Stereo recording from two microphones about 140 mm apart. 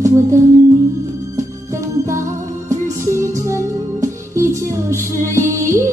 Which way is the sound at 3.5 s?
20° right (ahead or behind).